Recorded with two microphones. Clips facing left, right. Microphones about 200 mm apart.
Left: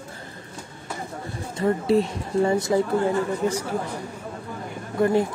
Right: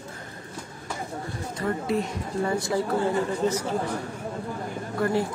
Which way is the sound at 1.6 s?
30° left (ahead or behind).